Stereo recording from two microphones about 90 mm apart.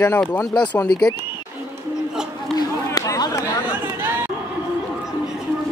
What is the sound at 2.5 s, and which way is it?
Run, 45° left (ahead or behind).